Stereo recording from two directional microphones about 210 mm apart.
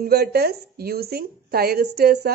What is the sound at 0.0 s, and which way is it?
A woman's voice, 50° right (ahead or behind).